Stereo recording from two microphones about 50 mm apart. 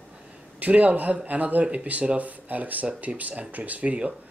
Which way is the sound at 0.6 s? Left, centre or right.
Right.